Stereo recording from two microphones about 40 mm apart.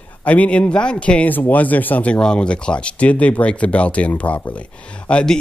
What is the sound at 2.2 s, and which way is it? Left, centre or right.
Speech, left.